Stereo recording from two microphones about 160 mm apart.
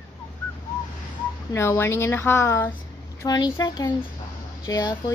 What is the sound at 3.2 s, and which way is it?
A woman's voice, 25° left (ahead or behind).